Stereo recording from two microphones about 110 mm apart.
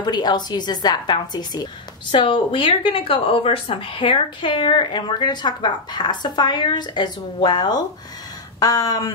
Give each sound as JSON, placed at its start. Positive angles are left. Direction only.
{"t": 0.0, "sound": "a woman's voice", "side_deg": 40}